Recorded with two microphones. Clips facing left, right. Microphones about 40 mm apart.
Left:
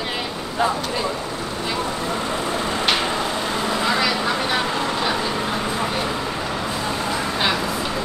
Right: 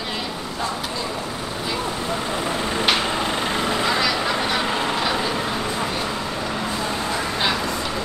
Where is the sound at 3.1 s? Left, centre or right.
Centre.